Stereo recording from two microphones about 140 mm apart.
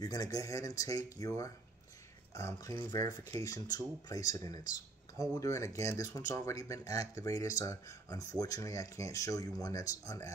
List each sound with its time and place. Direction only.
0.0 s speech: 25° left (ahead or behind)
2.3 s speech: 20° left (ahead or behind)